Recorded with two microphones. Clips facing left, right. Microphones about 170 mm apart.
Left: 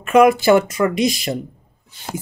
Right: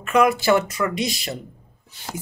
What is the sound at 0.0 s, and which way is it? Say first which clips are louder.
Speech: left 6 dB; 15° left (ahead or behind).